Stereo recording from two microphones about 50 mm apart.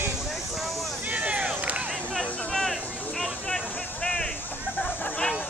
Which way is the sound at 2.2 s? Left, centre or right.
Centre.